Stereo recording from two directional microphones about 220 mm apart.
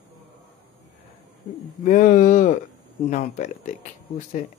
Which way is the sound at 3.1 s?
35° left (ahead or behind).